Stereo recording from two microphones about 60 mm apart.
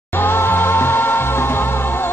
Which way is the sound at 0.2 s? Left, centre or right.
Left.